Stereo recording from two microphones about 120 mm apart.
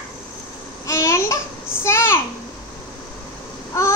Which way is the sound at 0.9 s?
25° left (ahead or behind).